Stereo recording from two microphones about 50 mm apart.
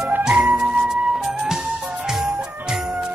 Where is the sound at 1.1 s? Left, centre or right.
Centre.